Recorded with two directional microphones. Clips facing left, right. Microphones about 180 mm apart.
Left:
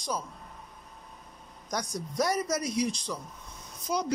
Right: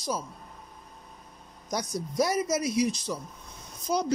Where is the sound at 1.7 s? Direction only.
10° right (ahead or behind).